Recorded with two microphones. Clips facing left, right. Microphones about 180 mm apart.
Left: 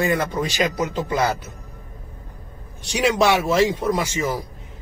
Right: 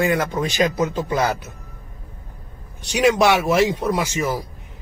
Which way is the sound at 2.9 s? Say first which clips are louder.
Right 2 dB; 20° right (ahead or behind).